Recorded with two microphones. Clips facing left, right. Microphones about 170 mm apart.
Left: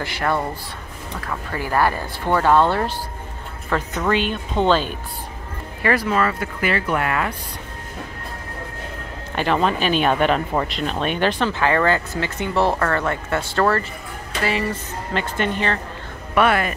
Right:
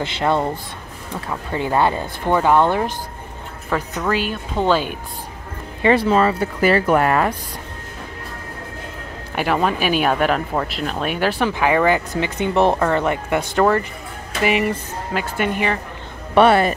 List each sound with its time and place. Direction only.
0.0 s speech: 20° right (ahead or behind)
4.0 s speech: 5° right (ahead or behind)
5.8 s speech: 25° right (ahead or behind)
9.3 s speech: 10° right (ahead or behind)
16.3 s speech: 30° right (ahead or behind)